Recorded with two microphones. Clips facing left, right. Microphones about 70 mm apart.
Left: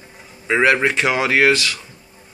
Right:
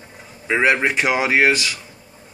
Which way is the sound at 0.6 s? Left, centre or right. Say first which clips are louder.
Left 1 dB; right.